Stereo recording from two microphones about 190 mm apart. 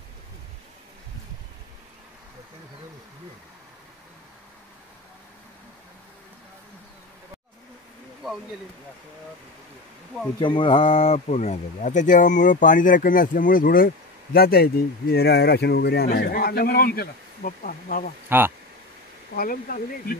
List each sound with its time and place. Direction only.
10.4 s speech: 25° left (ahead or behind); by 18.1 s 45° left (ahead or behind)
19.3 s speech: 50° left (ahead or behind)